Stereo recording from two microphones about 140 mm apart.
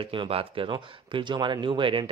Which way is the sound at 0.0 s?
40° right (ahead or behind).